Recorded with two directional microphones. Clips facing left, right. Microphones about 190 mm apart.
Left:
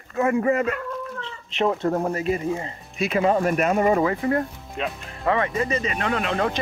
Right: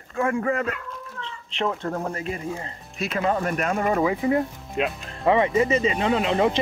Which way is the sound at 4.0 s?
5° right (ahead or behind).